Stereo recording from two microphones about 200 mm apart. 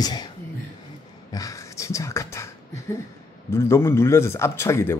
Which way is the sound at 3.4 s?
15° left (ahead or behind).